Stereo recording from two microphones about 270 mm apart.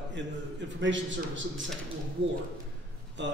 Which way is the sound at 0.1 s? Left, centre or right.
Right.